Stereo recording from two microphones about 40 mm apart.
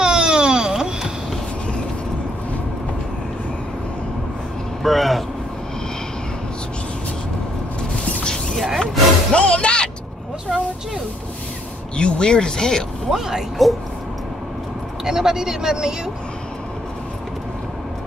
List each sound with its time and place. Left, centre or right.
0.0 s baby cry: centre
4.8 s vehicle: centre
8.5 s rub: centre
9.3 s music: left
10.5 s a sound: centre
12.0 s speech: left
13.1 s speech: centre
13.6 s a sound: centre
15.0 s speech: centre